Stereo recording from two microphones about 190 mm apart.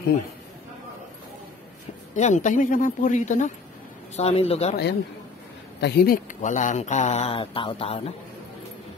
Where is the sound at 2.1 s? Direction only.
40° left (ahead or behind).